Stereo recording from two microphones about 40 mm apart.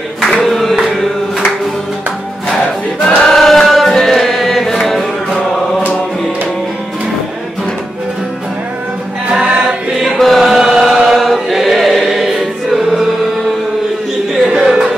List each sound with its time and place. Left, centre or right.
0.3 s a sound: centre
3.2 s chant: centre
9.3 s choir: right
9.9 s choir: centre
14.5 s music: centre